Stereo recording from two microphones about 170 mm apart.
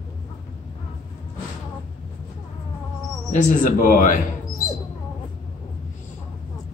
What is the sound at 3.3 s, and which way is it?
Speech, 50° left (ahead or behind).